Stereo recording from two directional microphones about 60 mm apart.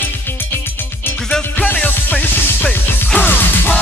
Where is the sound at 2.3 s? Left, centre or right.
Left.